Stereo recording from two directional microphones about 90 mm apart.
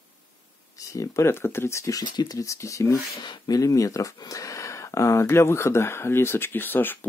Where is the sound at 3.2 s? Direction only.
55° left (ahead or behind).